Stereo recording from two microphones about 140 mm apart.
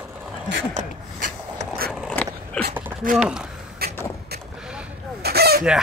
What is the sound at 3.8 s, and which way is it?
Vehicle, 90° right.